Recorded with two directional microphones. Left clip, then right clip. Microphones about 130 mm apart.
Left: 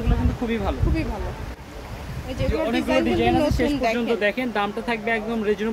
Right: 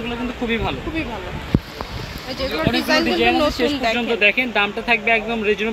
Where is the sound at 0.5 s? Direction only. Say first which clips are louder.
Right 4 dB; 15° left (ahead or behind).